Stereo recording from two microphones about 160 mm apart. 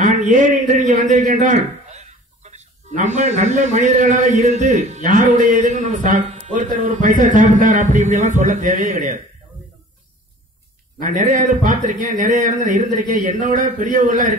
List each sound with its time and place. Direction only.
0.0 s a man's voice: 50° right (ahead or behind)
11.0 s a man's voice: 55° right (ahead or behind)